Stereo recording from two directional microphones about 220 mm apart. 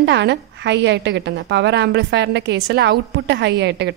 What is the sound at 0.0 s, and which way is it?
A woman's voice, 50° right (ahead or behind).